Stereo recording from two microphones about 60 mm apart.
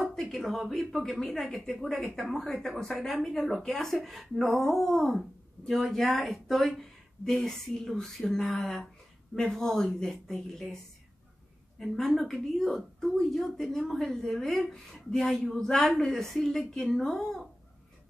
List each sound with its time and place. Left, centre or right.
0.0 s a woman's voice: centre
11.8 s a woman's voice: centre